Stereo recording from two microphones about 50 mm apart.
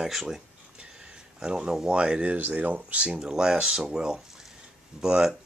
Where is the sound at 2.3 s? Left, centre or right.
Right.